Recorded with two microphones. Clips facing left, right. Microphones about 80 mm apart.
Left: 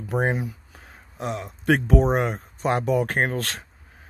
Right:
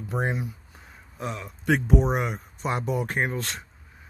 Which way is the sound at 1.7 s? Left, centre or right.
Left.